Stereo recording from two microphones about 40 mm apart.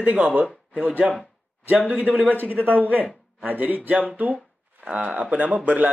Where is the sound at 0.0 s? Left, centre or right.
Right.